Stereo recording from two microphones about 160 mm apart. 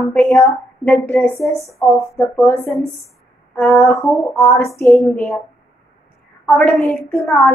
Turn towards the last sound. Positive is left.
turn(degrees=5)  # may be behind; listen again after turning